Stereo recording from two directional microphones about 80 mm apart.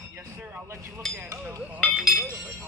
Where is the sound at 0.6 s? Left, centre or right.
Right.